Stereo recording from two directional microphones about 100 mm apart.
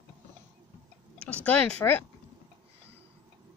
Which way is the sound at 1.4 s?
15° left (ahead or behind).